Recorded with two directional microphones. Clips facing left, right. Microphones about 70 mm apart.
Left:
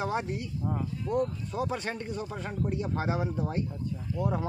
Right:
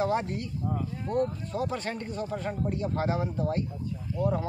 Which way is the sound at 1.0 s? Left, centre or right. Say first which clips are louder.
Right 1 dB; right.